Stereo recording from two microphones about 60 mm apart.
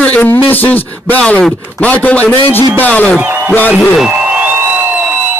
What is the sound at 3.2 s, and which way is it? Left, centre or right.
Speech, right.